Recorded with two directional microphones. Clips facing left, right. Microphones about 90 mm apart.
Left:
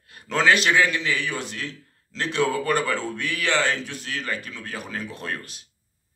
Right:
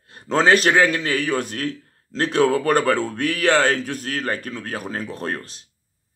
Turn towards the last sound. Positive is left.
turn(degrees=-35)  # may be behind; listen again after turning